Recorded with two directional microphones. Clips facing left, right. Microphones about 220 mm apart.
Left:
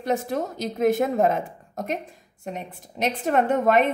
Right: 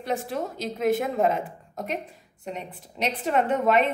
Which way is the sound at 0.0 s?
45° left (ahead or behind).